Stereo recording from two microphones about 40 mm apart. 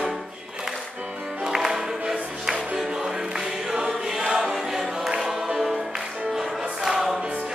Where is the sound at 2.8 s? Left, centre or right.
Centre.